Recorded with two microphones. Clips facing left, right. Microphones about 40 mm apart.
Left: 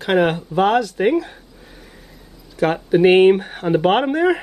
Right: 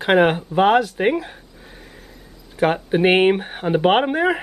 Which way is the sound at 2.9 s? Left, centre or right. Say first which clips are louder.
Left 5 dB; centre.